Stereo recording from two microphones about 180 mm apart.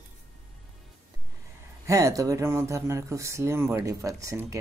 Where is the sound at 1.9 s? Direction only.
20° right (ahead or behind).